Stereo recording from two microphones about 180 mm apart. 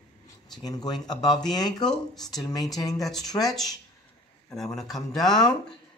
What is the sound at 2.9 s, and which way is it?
Speech, centre (ahead or behind).